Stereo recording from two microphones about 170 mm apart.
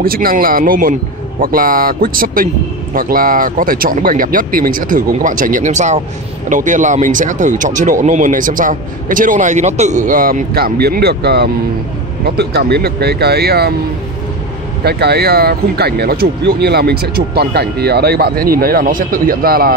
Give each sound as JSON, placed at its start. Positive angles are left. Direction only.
{"t": 0.0, "sound": "speech", "side_deg": -60}
{"t": 14.8, "sound": "speech", "side_deg": -70}